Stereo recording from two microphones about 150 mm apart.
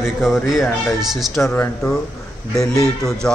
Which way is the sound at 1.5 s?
10° left (ahead or behind).